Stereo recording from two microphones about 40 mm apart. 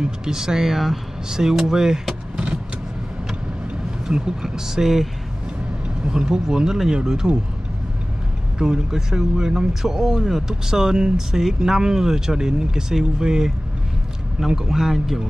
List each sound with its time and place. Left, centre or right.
0.0 s speech: centre
2.3 s vehicle: right
4.1 s speech: centre
8.5 s speech: centre